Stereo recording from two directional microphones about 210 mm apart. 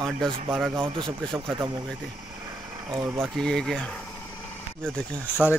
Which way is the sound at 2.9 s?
20° right (ahead or behind).